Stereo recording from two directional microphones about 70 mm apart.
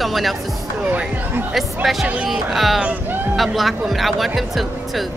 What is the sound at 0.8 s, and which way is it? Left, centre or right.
Speech, right.